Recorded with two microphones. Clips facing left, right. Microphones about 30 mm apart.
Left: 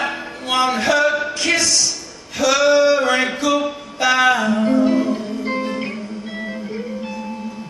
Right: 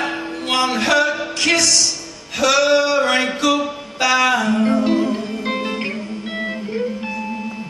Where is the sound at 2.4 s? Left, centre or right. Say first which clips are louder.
Left 1 dB; right.